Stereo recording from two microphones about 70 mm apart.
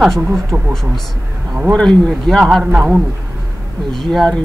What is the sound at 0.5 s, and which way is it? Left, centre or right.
Speech, right.